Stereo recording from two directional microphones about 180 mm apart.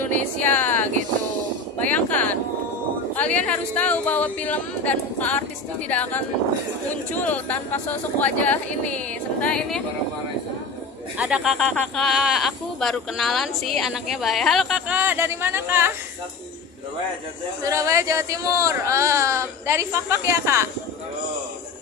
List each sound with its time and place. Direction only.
0.0 s speech: 10° left (ahead or behind)
1.9 s speech: 10° left (ahead or behind)
11.1 s speech: 5° right (ahead or behind)
15.0 s speech: 10° right (ahead or behind)
17.6 s speech: 15° right (ahead or behind)